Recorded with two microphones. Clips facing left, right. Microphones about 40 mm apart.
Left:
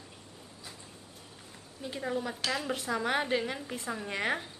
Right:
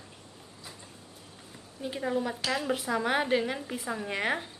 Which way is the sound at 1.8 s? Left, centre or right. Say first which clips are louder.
Right 4 dB; centre.